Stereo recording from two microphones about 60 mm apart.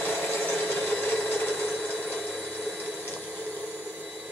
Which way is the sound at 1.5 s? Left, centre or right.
Centre.